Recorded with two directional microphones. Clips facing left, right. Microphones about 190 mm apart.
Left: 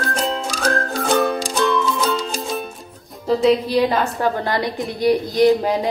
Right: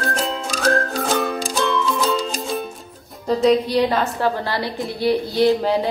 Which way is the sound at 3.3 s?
5° left (ahead or behind).